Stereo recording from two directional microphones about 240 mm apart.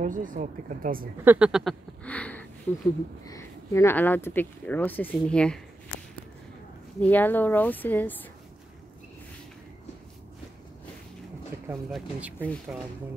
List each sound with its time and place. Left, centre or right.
0.0 s speech: right
1.2 s speech: centre
7.0 s speech: centre
11.9 s speech: centre